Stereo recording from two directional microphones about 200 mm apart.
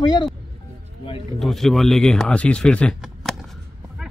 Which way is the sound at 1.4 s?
Centre (ahead or behind).